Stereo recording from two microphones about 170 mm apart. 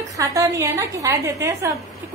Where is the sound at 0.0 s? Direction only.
20° right (ahead or behind).